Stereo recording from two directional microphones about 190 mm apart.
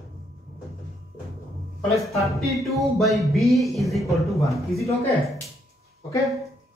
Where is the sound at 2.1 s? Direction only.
Centre (ahead or behind).